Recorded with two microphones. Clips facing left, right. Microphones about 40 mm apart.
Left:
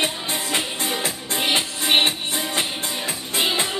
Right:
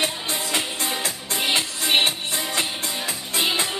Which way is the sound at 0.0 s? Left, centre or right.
Left.